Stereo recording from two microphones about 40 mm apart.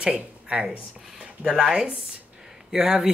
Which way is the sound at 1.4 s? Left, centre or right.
Centre.